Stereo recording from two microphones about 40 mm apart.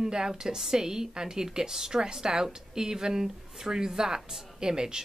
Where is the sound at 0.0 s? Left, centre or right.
Centre.